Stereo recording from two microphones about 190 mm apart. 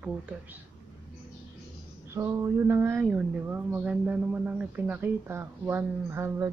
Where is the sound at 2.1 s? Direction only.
15° right (ahead or behind).